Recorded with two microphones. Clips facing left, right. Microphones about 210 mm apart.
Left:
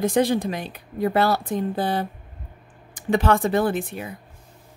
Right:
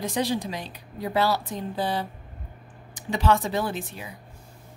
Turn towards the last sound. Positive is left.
turn(degrees=55)  # may be behind; listen again after turning